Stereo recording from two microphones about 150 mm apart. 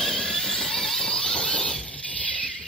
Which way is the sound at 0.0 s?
5° left (ahead or behind).